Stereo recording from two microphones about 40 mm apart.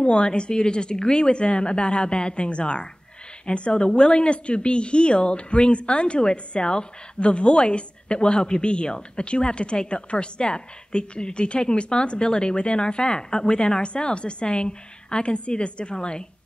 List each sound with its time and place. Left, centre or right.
0.0 s a woman's voice: left